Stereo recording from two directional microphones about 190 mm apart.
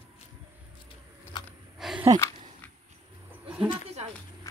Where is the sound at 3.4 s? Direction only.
5° right (ahead or behind).